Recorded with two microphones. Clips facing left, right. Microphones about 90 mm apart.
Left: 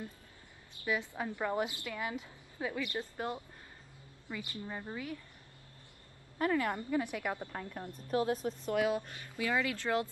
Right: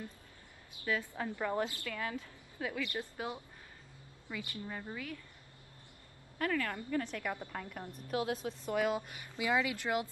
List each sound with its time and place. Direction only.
0.8 s a woman's voice: 15° left (ahead or behind)
3.0 s a woman's voice: 5° right (ahead or behind)
4.3 s a woman's voice: 15° left (ahead or behind)
6.3 s a woman's voice: 20° left (ahead or behind)
7.8 s speech: 15° right (ahead or behind)
8.6 s a woman's voice: centre (ahead or behind)
9.1 s speech: 15° right (ahead or behind)